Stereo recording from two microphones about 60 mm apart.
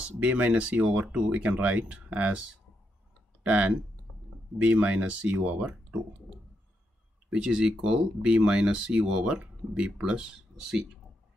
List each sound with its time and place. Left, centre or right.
0.2 s speech: right
3.4 s speech: centre
7.3 s speech: centre